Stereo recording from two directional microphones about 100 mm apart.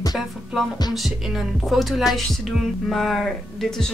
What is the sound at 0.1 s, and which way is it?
Speech, centre (ahead or behind).